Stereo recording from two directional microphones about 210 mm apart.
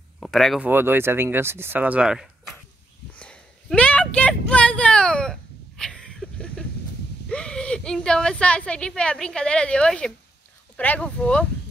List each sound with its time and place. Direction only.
0.2 s speech: centre (ahead or behind)
3.2 s a sound: 5° left (ahead or behind)
7.2 s a woman's voice: 5° left (ahead or behind)